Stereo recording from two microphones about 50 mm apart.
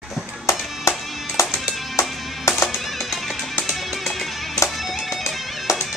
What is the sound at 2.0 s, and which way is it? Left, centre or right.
Music, centre.